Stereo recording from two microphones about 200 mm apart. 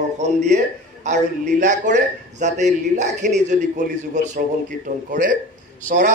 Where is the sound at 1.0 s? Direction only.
35° right (ahead or behind).